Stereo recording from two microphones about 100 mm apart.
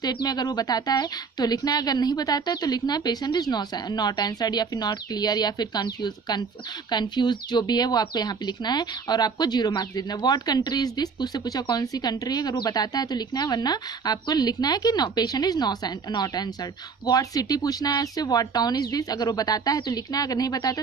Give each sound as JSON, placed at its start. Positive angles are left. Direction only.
{"t": 0.0, "sound": "speech", "side_deg": 45}